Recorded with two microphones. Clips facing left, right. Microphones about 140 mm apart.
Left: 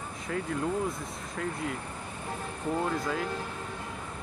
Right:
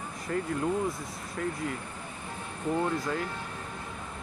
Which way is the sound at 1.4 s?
Centre (ahead or behind).